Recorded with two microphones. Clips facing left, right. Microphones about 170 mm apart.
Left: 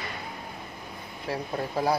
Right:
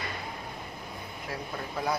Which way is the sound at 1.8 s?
30° left (ahead or behind).